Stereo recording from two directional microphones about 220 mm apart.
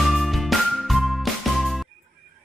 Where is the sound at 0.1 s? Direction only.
Centre (ahead or behind).